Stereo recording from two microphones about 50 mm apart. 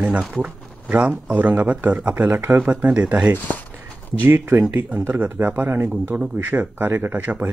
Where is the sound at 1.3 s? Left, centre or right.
Right.